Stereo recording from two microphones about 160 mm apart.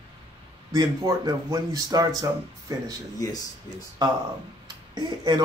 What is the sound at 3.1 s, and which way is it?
Speech, 25° left (ahead or behind).